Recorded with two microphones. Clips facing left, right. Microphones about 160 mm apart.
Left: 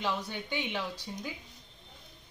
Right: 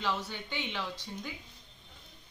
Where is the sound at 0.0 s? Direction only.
15° left (ahead or behind).